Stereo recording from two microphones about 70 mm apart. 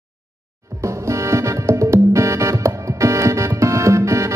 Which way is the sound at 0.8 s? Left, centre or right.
Right.